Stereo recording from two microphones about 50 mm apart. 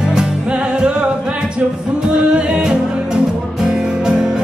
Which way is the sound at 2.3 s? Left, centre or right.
Centre.